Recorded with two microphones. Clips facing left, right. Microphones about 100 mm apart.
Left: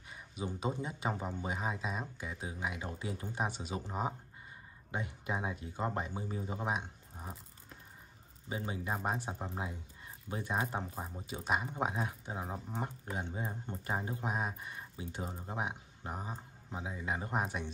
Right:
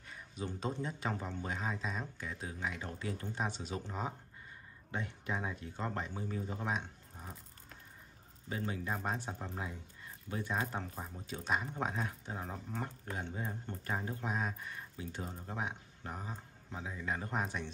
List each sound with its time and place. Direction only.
0.1 s speech: 10° left (ahead or behind)
8.5 s speech: 15° left (ahead or behind)